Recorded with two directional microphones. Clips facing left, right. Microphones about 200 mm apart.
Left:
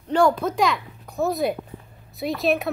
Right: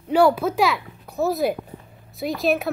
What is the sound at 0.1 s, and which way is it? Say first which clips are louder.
A child's voice: right 2 dB; 5° right (ahead or behind).